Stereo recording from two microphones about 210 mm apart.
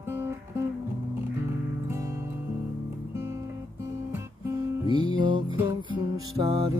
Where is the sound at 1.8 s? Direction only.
15° right (ahead or behind).